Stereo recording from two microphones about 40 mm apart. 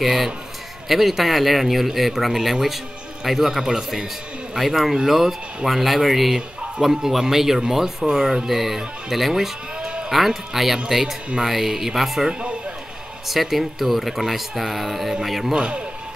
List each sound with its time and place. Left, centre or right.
0.0 s a man's voice: centre
9.8 s sheep: right
10.1 s a man's voice: centre
12.3 s speech: right
13.3 s speech: centre
15.5 s speech: right